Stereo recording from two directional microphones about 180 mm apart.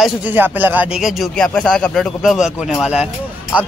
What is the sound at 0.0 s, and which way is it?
Speech, 10° right (ahead or behind).